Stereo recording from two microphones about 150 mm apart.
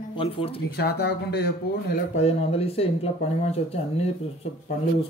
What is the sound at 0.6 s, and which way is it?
Speech, 90° left.